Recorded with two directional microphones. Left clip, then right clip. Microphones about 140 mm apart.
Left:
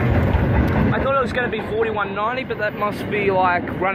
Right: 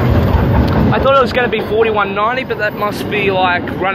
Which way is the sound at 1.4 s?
10° right (ahead or behind).